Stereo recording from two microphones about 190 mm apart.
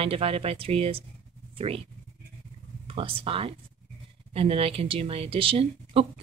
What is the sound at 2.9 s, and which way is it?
Speech, 30° right (ahead or behind).